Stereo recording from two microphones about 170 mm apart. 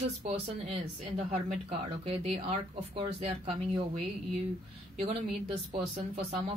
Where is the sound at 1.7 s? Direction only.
35° right (ahead or behind).